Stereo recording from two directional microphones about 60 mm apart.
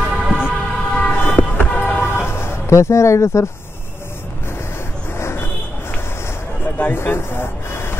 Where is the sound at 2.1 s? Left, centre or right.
Left.